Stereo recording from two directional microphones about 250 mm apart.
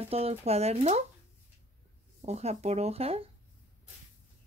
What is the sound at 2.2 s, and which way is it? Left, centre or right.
Speech, right.